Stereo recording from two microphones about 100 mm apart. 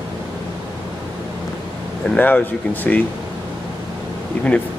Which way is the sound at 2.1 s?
15° left (ahead or behind).